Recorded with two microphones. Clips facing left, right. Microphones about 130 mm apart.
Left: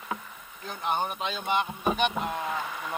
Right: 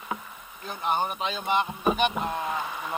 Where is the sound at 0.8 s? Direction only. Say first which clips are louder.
Right 2 dB; 5° right (ahead or behind).